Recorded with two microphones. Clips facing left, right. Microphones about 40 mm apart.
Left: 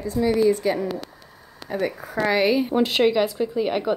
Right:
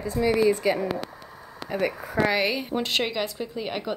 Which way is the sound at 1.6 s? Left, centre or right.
Centre.